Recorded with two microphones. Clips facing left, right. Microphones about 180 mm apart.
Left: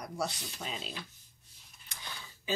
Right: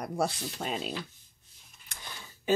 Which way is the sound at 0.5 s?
55° right (ahead or behind).